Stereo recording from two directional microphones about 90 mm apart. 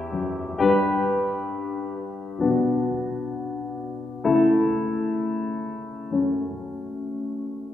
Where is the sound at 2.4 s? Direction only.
5° right (ahead or behind).